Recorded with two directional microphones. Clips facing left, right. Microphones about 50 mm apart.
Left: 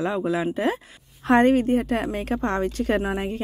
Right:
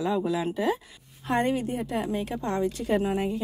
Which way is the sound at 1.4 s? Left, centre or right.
Left.